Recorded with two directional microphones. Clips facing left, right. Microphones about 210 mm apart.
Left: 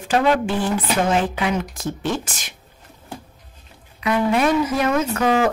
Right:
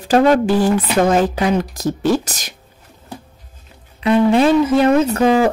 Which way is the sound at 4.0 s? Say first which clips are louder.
Right 6 dB; 30° right (ahead or behind).